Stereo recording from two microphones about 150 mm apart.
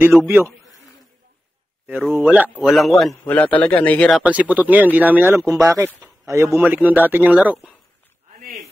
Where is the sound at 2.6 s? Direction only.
Centre (ahead or behind).